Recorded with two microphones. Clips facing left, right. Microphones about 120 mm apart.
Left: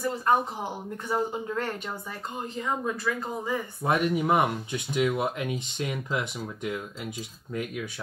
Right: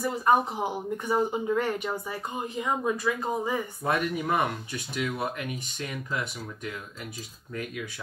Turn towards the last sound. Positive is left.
turn(degrees=20)  # may be behind; listen again after turning